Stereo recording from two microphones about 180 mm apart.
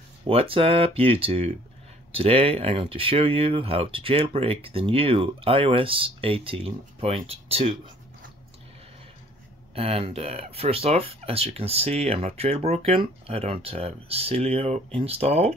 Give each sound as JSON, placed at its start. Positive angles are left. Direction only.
{"t": 0.3, "sound": "speech", "side_deg": -30}
{"t": 9.8, "sound": "speech", "side_deg": -35}